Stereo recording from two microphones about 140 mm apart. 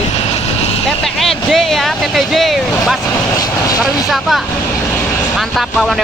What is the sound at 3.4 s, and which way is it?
Speech, 25° left (ahead or behind).